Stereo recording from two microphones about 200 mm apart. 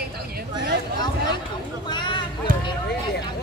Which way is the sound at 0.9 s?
20° left (ahead or behind).